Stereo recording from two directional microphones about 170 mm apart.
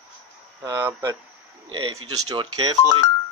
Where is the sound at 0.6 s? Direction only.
20° right (ahead or behind).